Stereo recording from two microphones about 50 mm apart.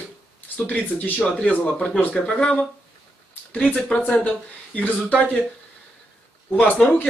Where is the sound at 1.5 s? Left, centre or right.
Left.